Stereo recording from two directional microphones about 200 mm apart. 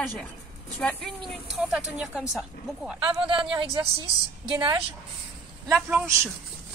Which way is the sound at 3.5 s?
25° right (ahead or behind).